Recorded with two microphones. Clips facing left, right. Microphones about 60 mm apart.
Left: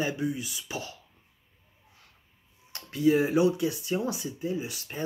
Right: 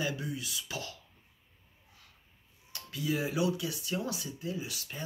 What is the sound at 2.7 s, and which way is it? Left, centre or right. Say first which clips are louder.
Speech: left 10 dB; left.